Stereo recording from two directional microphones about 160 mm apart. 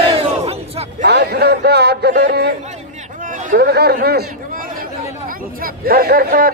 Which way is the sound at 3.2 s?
55° right (ahead or behind).